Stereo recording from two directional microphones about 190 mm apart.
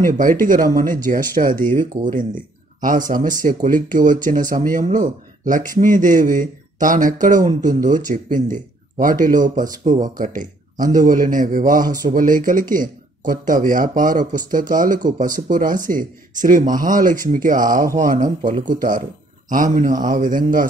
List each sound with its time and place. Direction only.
0.0 s speech: 45° right (ahead or behind)